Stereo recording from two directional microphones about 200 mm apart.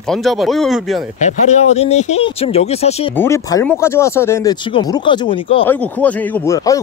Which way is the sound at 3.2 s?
15° left (ahead or behind).